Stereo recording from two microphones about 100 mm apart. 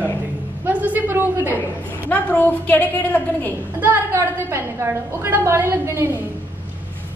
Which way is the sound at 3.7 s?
20° right (ahead or behind).